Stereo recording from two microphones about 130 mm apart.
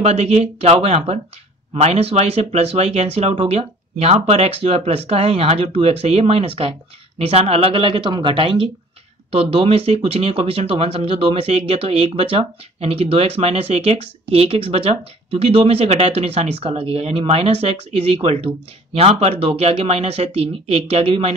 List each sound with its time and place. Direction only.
0.0 s speech: 55° right (ahead or behind)